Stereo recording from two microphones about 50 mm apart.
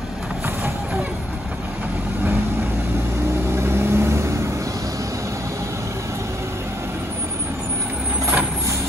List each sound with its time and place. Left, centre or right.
3.5 s vehicle: right